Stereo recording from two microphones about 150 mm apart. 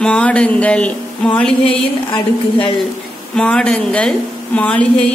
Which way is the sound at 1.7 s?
35° left (ahead or behind).